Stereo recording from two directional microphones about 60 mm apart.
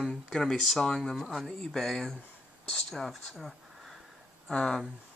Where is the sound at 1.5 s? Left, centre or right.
Centre.